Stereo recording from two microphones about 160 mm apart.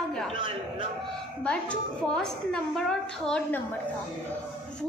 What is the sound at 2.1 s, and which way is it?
A woman's voice, 5° left (ahead or behind).